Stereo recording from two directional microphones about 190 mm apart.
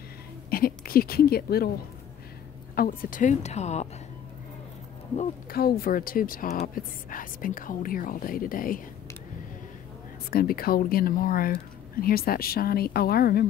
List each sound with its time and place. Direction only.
0.5 s speech: 50° left (ahead or behind)
2.7 s a woman's voice: 50° left (ahead or behind)
5.5 s speech: 50° left (ahead or behind)
10.3 s speech: 50° left (ahead or behind)